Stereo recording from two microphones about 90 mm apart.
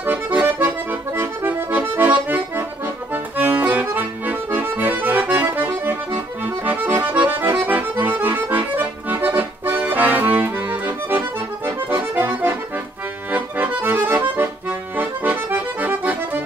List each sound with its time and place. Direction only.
0.0 s accordion: 20° right (ahead or behind)